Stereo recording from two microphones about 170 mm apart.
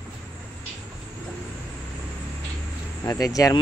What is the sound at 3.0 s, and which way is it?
Speech, 20° left (ahead or behind).